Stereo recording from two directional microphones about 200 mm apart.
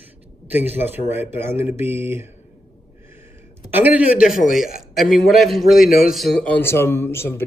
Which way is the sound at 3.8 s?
5° right (ahead or behind).